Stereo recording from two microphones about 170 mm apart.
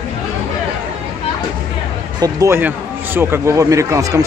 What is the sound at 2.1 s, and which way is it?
Speech, 20° right (ahead or behind).